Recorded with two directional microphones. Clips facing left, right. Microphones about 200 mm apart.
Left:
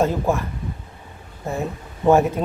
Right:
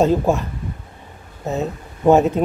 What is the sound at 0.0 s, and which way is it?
Speech, 20° right (ahead or behind).